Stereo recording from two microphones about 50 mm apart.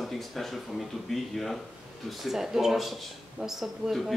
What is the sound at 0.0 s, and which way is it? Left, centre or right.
Speech, centre.